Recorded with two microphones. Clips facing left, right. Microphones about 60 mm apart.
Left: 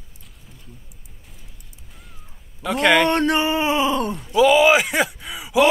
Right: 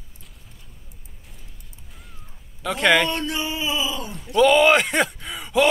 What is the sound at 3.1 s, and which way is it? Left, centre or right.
Speech, left.